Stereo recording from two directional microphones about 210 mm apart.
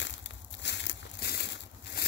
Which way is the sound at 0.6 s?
55° left (ahead or behind).